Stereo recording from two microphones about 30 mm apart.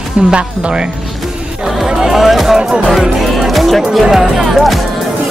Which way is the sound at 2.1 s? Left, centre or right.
Centre.